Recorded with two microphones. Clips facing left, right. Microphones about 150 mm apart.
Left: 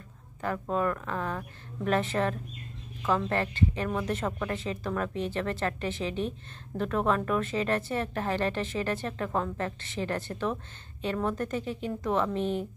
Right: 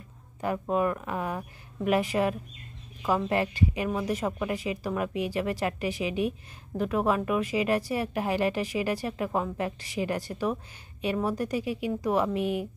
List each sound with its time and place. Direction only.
0.4 s speech: 15° right (ahead or behind)